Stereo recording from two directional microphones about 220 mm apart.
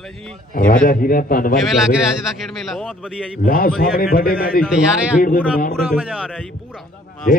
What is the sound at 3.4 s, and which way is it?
A man's voice, 40° left (ahead or behind).